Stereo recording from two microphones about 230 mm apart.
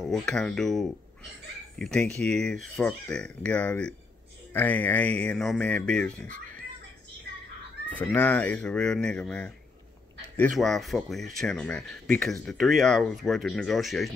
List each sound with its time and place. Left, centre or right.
0.0 s speech: centre
7.9 s speech: centre